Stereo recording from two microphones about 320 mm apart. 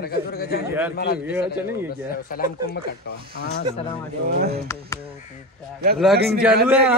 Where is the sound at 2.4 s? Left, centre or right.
Left.